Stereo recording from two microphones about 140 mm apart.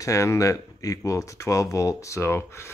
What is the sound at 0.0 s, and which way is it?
Speech, 20° left (ahead or behind).